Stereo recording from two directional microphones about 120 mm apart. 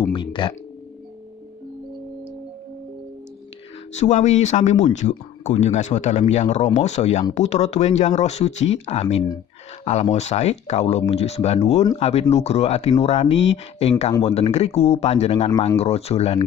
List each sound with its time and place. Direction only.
0.1 s speech: 45° left (ahead or behind)
3.9 s speech: 80° left; by 16.4 s 55° left (ahead or behind)